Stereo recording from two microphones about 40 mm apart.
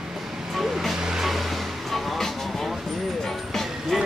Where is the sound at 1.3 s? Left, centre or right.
Centre.